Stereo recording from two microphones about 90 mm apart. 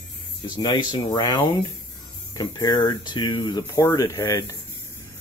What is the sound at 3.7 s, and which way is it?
Speech, 40° left (ahead or behind).